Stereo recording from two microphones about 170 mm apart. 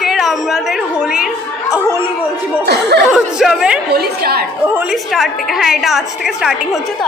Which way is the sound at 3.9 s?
65° right (ahead or behind).